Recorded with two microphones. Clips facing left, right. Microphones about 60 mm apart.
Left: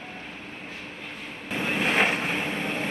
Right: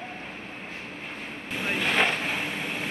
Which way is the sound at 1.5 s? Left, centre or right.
Left.